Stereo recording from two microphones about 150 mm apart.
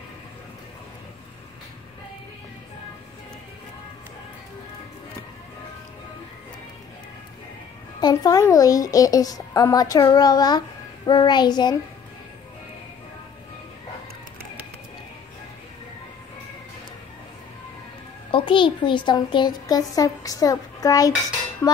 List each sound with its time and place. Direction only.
8.0 s a child's voice: 25° left (ahead or behind)
18.3 s a child's voice: 35° left (ahead or behind)